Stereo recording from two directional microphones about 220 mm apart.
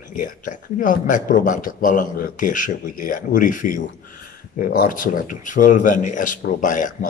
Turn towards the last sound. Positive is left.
turn(degrees=35)  # may be behind; listen again after turning